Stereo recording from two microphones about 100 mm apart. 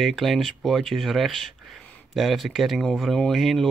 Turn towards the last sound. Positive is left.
turn(degrees=0)  # may be behind; listen again after turning